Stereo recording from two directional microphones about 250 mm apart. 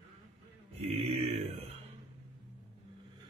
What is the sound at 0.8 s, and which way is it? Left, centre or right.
Mantra, right.